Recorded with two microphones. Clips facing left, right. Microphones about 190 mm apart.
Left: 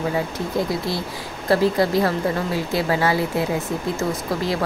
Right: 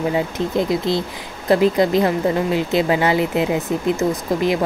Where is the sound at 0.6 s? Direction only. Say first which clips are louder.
Right 4 dB; 20° right (ahead or behind).